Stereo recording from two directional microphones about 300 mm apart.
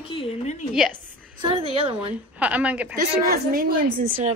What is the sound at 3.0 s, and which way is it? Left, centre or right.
A woman's voice, right.